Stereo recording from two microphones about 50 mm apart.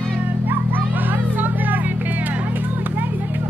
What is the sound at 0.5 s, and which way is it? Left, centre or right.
Music, right.